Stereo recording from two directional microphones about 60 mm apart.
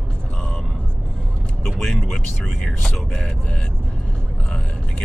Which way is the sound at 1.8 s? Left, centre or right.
Centre.